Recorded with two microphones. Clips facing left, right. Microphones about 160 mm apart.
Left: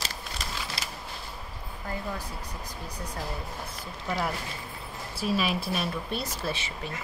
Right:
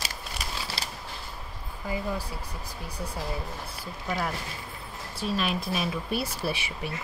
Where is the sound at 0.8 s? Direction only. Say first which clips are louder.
Right 1 dB; 30° right (ahead or behind).